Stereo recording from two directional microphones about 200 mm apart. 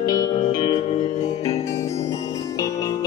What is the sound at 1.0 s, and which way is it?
Music, 35° left (ahead or behind).